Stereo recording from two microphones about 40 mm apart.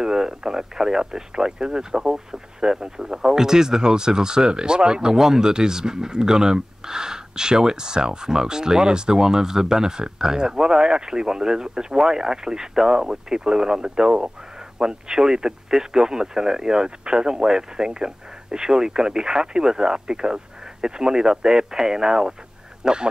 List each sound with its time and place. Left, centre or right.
0.0 s speech: centre